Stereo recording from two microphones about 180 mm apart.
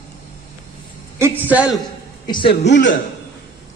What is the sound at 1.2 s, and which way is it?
Speech, 10° right (ahead or behind).